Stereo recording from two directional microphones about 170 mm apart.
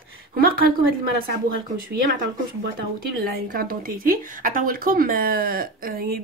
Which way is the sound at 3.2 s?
60° right (ahead or behind).